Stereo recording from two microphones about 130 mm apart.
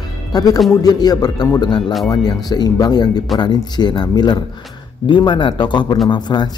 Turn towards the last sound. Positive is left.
turn(degrees=35)  # may be behind; listen again after turning